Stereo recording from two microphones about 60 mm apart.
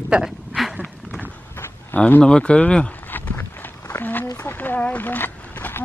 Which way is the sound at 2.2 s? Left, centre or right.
Centre.